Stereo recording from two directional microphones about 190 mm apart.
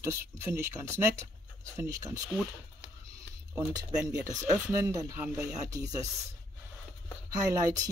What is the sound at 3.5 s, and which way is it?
Speech, 5° right (ahead or behind).